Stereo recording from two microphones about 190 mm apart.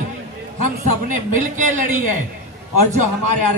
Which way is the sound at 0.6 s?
45° right (ahead or behind).